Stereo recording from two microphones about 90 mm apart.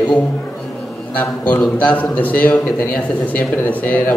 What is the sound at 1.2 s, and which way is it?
A man's voice, 20° left (ahead or behind).